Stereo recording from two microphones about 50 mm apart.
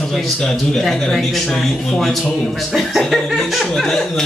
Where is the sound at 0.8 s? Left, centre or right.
Centre.